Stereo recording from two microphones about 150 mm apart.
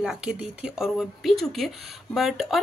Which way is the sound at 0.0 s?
5° right (ahead or behind).